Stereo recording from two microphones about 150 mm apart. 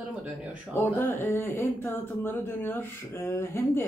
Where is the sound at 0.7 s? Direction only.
15° left (ahead or behind).